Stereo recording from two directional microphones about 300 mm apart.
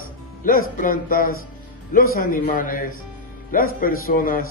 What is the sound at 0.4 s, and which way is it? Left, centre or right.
Music, left.